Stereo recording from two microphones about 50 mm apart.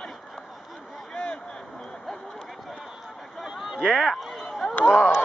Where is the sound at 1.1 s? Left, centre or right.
Left.